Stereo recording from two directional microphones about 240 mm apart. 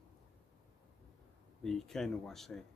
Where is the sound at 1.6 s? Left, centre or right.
Centre.